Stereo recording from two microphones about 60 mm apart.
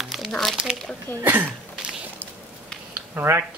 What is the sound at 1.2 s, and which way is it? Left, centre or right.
Speech, right.